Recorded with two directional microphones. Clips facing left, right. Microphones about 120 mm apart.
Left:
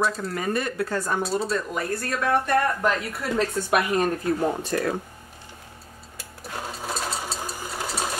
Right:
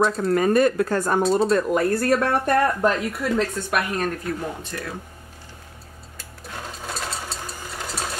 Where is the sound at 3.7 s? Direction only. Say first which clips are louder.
Left 2 dB; 20° left (ahead or behind).